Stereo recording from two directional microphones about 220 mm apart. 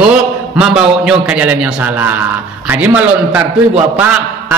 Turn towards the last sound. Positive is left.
turn(degrees=-5)  # may be behind; listen again after turning